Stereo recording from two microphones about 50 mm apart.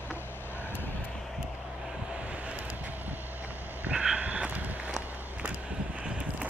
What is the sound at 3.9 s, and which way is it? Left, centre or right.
Vehicle, centre.